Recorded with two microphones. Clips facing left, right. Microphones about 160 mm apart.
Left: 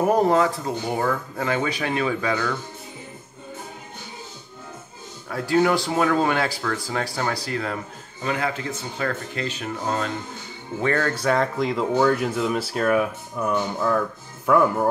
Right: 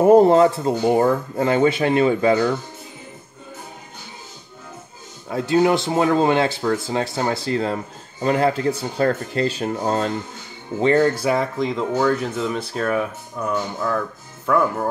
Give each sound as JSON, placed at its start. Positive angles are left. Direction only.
{"t": 0.0, "sound": "speech", "side_deg": -30}
{"t": 5.3, "sound": "speech", "side_deg": -20}
{"t": 10.8, "sound": "speech", "side_deg": -20}
{"t": 11.1, "sound": "speech", "side_deg": -10}
{"t": 11.5, "sound": "speech", "side_deg": 0}
{"t": 14.4, "sound": "music", "side_deg": 15}